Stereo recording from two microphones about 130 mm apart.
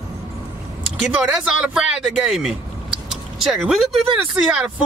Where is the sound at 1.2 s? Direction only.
5° right (ahead or behind).